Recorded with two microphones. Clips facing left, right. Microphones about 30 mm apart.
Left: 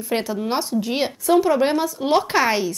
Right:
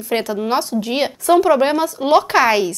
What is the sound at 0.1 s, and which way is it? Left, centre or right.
A woman's voice, centre.